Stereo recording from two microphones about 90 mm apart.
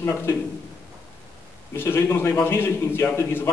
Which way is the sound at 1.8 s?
25° left (ahead or behind).